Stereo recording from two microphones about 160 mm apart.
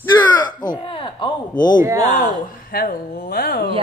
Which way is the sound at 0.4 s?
25° left (ahead or behind).